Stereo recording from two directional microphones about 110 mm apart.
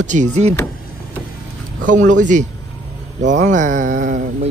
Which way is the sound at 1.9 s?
90° right.